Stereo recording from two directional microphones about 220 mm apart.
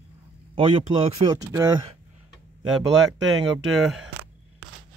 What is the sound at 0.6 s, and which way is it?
Speech, 25° right (ahead or behind).